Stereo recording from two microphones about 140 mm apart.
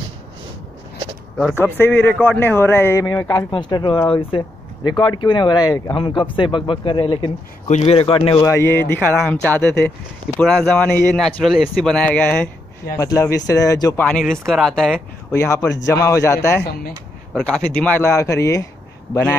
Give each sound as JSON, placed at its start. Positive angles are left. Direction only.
{"t": 1.6, "sound": "a man's voice", "side_deg": 15}
{"t": 3.5, "sound": "speech", "side_deg": 35}
{"t": 7.6, "sound": "speech", "side_deg": 50}
{"t": 8.4, "sound": "a man's voice", "side_deg": 20}
{"t": 12.9, "sound": "a man's voice", "side_deg": 20}
{"t": 13.9, "sound": "speech", "side_deg": 5}
{"t": 15.3, "sound": "a man's voice", "side_deg": 20}
{"t": 17.3, "sound": "a man's voice", "side_deg": 5}